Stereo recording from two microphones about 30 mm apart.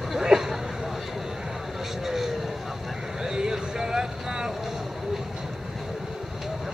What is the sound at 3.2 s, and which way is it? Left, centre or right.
Vehicle, right.